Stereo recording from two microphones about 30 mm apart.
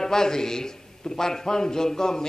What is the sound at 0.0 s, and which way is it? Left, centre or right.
A man's voice, centre.